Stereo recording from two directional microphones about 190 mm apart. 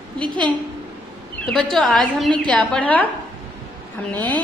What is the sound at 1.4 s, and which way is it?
A woman's voice, 5° left (ahead or behind).